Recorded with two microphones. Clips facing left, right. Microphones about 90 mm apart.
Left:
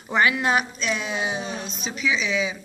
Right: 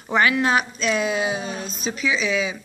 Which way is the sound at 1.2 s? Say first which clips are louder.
Right 3 dB; 25° left (ahead or behind).